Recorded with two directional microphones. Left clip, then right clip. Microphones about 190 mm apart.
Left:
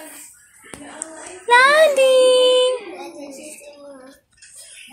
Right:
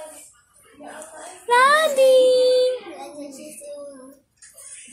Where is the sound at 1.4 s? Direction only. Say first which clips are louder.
Left 4 dB; 15° left (ahead or behind).